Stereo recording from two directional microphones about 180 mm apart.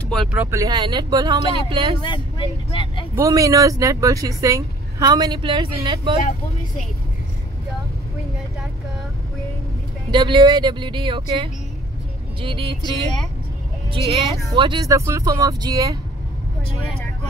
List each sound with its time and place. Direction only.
0.1 s speech: centre (ahead or behind)
0.4 s speech: 15° right (ahead or behind)
1.7 s music: 30° right (ahead or behind)
2.0 s speech: 25° left (ahead or behind)
3.2 s speech: 20° right (ahead or behind)
10.1 s speech: 25° right (ahead or behind)
12.4 s music: 30° right (ahead or behind)
13.9 s music: 35° right (ahead or behind)
14.5 s speech: 25° right (ahead or behind)